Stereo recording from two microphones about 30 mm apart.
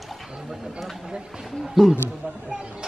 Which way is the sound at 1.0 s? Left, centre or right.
Right.